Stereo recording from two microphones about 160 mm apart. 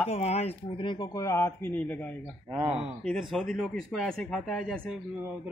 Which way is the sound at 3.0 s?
Centre (ahead or behind).